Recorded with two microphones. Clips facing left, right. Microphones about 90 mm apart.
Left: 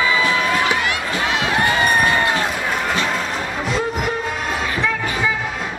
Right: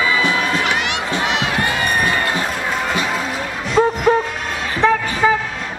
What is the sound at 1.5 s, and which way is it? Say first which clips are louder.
Run: left 2 dB; 20° left (ahead or behind).